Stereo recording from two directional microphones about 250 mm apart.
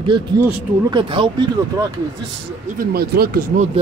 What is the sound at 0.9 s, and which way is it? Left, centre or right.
Speech, centre.